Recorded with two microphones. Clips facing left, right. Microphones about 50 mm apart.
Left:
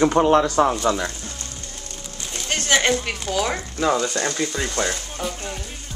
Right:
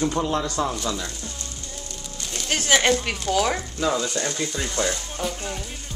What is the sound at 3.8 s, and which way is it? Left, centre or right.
Speech, left.